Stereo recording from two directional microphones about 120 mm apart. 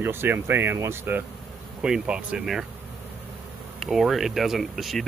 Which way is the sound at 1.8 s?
5° right (ahead or behind).